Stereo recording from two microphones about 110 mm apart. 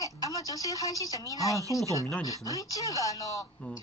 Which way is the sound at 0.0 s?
30° left (ahead or behind).